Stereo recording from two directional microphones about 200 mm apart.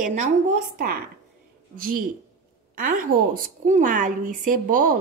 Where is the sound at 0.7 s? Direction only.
50° right (ahead or behind).